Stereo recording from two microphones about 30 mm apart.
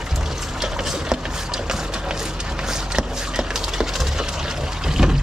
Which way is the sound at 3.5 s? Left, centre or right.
Centre.